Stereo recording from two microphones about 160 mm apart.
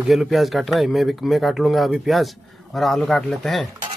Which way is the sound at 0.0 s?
Centre (ahead or behind).